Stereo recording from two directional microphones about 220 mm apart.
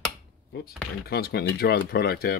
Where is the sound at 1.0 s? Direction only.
45° left (ahead or behind).